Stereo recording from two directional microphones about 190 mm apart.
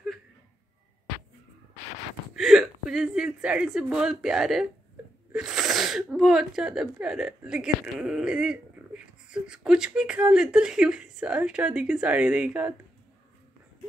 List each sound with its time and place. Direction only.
2.3 s speech: centre (ahead or behind)